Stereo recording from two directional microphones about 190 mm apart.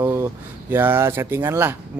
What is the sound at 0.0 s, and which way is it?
Speech, 10° right (ahead or behind).